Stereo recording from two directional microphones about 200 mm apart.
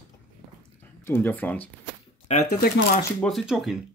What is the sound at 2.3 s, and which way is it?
Speech, 45° left (ahead or behind).